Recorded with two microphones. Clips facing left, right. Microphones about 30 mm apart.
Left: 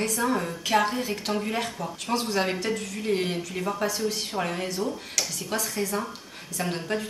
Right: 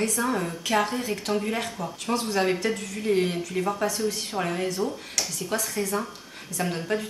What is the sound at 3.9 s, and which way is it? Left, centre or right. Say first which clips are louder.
Speech: even; centre.